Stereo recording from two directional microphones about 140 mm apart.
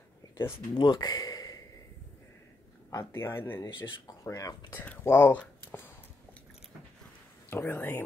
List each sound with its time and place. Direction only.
0.5 s speech: 35° left (ahead or behind)
2.9 s speech: 20° left (ahead or behind)
3.6 s speech: 30° left (ahead or behind)
4.7 s speech: 15° left (ahead or behind)
7.4 s speech: 15° left (ahead or behind)